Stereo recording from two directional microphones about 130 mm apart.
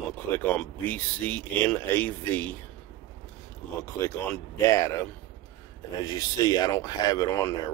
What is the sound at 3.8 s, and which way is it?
Speech, 20° left (ahead or behind).